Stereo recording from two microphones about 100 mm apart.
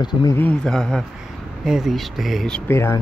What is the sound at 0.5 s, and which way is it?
Speech, 5° left (ahead or behind).